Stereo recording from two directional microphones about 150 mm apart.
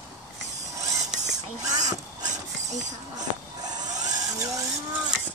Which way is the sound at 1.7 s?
55° right (ahead or behind).